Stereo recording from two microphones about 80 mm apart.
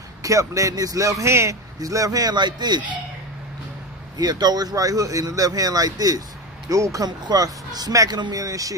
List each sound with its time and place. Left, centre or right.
0.2 s a man's voice: right
2.3 s a man's voice: right
4.2 s a man's voice: right
7.1 s a man's voice: right